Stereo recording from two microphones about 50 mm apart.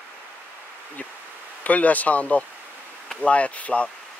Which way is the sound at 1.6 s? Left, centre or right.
Left.